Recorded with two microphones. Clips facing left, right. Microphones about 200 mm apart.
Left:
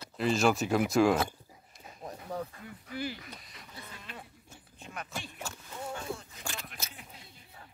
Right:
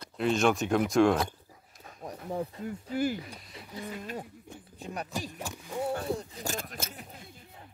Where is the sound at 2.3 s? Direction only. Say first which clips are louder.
Right 6 dB; 25° right (ahead or behind).